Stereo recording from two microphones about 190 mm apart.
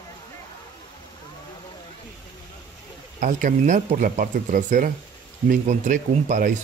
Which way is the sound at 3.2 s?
45° right (ahead or behind).